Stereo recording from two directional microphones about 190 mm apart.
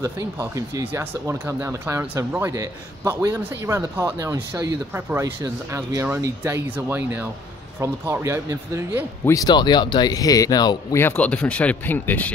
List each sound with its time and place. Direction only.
0.0 s speech: 15° right (ahead or behind)
9.2 s speech: 15° left (ahead or behind)